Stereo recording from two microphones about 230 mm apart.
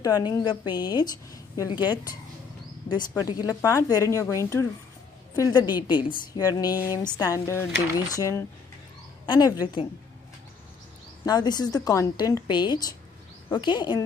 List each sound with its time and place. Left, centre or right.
0.0 s a woman's voice: centre
3.2 s a woman's voice: centre
11.2 s a woman's voice: centre